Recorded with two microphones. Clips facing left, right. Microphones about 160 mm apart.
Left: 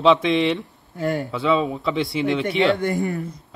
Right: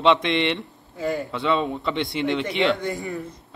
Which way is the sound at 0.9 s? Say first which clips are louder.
Left 2 dB; 70° left (ahead or behind).